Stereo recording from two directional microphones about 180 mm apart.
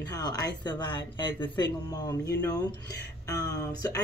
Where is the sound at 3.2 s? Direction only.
20° left (ahead or behind).